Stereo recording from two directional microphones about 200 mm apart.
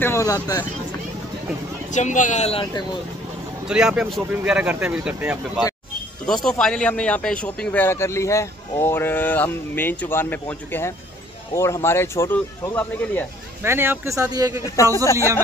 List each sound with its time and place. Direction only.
0.0 s speech: 15° left (ahead or behind)
1.9 s speech: 40° left (ahead or behind)
3.6 s speech: 5° right (ahead or behind)
13.6 s speech: 10° right (ahead or behind)
15.1 s speech: 15° left (ahead or behind)